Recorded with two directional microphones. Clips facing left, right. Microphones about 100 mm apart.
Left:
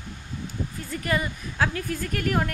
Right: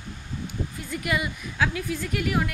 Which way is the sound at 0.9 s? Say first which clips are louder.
Left 1 dB; 40° left (ahead or behind).